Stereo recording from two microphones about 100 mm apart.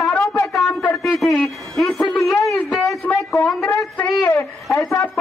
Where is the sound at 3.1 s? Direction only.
5° left (ahead or behind).